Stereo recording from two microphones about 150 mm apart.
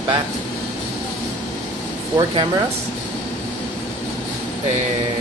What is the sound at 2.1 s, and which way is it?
Speech, 30° right (ahead or behind).